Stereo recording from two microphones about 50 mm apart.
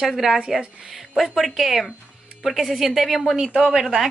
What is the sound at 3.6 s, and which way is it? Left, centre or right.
Speech, centre.